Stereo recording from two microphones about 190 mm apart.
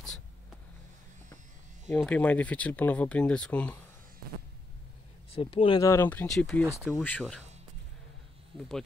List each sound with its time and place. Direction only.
1.9 s speech: 10° left (ahead or behind)
5.3 s speech: 30° left (ahead or behind)
5.9 s speech: 10° left (ahead or behind)
8.5 s speech: centre (ahead or behind)